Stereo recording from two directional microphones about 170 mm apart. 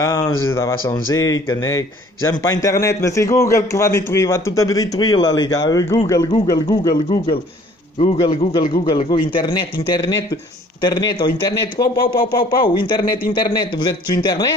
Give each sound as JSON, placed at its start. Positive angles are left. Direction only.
{"t": 0.0, "sound": "a man's voice", "side_deg": 15}
{"t": 8.0, "sound": "a man's voice", "side_deg": 35}
{"t": 12.3, "sound": "speech", "side_deg": 60}
{"t": 12.8, "sound": "a man's voice", "side_deg": 25}